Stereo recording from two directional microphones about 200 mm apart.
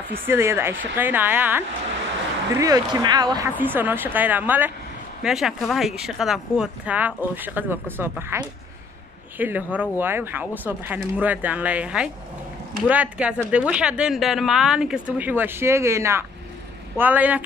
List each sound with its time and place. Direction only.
0.1 s speech: 10° right (ahead or behind)
3.5 s speech: 10° right (ahead or behind)